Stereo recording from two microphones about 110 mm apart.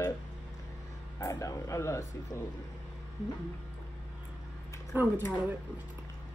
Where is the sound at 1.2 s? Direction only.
30° left (ahead or behind).